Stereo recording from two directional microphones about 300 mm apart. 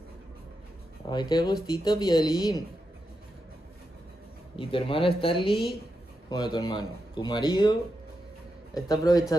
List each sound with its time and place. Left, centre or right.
1.0 s speech: centre
4.6 s speech: centre
8.8 s speech: centre